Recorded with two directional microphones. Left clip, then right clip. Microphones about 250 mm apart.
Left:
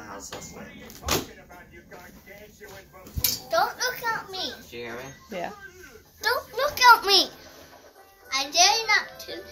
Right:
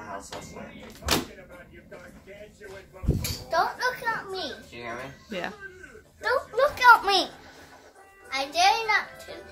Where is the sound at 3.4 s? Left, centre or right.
Centre.